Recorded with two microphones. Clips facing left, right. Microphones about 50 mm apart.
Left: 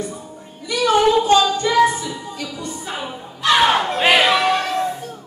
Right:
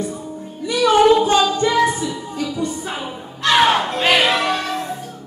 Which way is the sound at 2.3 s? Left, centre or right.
Right.